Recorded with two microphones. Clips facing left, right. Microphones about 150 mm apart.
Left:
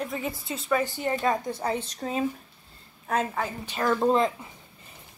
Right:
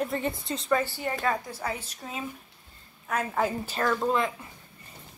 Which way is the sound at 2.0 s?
45° left (ahead or behind).